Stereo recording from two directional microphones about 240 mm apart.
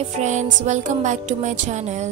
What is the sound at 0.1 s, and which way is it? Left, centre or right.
Music, right.